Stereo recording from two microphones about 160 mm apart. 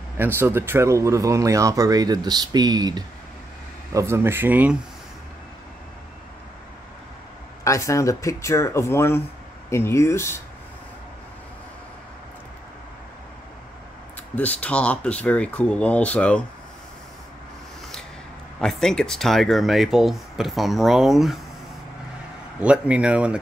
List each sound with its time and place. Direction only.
0.2 s speech: 15° right (ahead or behind)
7.6 s speech: 20° left (ahead or behind)
14.3 s speech: 10° left (ahead or behind)
18.6 s speech: 5° left (ahead or behind)
22.6 s speech: 5° right (ahead or behind)